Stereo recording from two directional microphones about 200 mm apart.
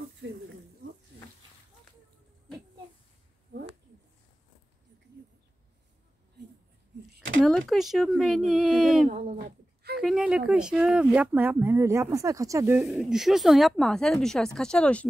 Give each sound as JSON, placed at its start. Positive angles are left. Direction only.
{"t": 7.4, "sound": "speech", "side_deg": 0}
{"t": 9.1, "sound": "speech", "side_deg": -35}
{"t": 9.9, "sound": "speech", "side_deg": -5}